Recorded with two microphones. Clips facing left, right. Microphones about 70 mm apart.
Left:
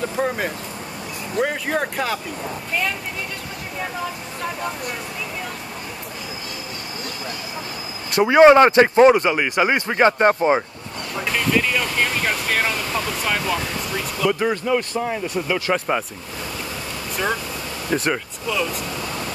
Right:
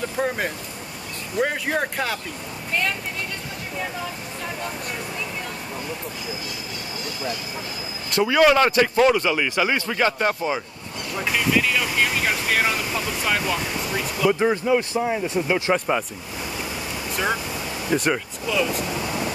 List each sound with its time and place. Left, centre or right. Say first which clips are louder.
0.2 s speech: left 1 dB; centre
1.4 s speech: left 1 dB; centre
8.2 s speech: left 6 dB; left
11.2 s speech: left 1 dB; centre
15.2 s speech: right 1 dB; right
17.1 s speech: left 1 dB; centre
18.9 s a sound: right 2 dB; centre